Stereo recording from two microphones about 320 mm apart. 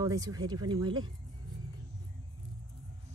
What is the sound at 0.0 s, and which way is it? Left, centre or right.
Speech, centre.